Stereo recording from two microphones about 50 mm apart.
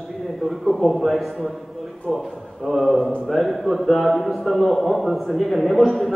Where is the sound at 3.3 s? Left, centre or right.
Centre.